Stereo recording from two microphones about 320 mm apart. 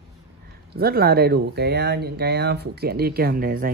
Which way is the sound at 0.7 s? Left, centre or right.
Right.